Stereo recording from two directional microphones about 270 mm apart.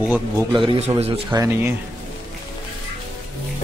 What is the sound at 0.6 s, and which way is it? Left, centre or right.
Speech, right.